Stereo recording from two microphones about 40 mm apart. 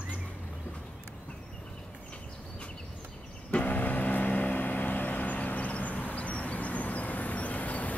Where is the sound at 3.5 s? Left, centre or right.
Left.